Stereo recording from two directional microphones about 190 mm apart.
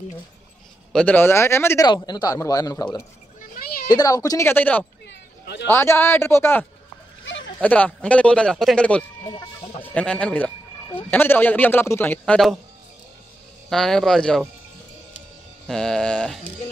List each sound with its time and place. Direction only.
0.9 s speech: 10° left (ahead or behind)
5.0 s a sound: 65° left (ahead or behind)
5.7 s speech: 15° left (ahead or behind)
7.6 s speech: 10° left (ahead or behind)
9.2 s speech: 25° left (ahead or behind)
9.8 s speech: 5° left (ahead or behind)
13.7 s speech: centre (ahead or behind)
15.6 s speech: 5° left (ahead or behind)